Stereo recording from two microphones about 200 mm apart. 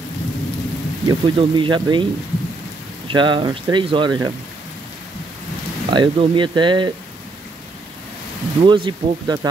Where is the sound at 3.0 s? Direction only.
25° right (ahead or behind).